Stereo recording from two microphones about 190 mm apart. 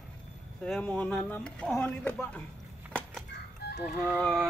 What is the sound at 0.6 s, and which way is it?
Speech, 5° left (ahead or behind).